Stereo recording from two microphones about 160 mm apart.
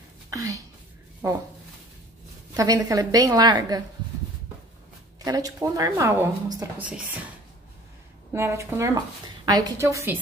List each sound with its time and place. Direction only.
0.3 s a woman's voice: 20° right (ahead or behind)
2.5 s speech: 20° right (ahead or behind)
5.2 s speech: 25° right (ahead or behind)
8.3 s a woman's voice: 15° right (ahead or behind)